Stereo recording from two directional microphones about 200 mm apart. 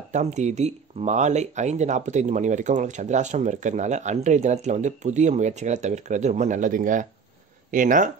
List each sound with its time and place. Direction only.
0.1 s speech: 35° right (ahead or behind)